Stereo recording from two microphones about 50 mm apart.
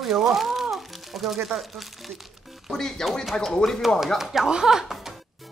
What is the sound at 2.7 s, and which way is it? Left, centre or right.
Speech, centre.